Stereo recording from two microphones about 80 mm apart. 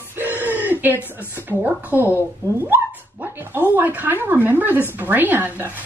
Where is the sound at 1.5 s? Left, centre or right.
Right.